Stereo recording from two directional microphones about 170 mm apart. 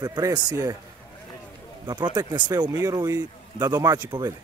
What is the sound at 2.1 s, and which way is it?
Speech, 25° right (ahead or behind).